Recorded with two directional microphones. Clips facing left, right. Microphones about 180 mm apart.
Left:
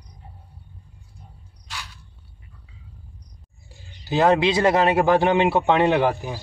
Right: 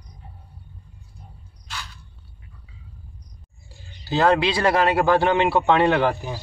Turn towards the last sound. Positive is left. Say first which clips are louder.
# even
turn(degrees=15)  # may be behind; listen again after turning